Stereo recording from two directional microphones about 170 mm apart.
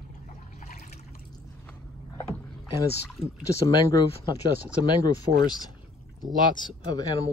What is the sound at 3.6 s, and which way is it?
Speech, 20° left (ahead or behind).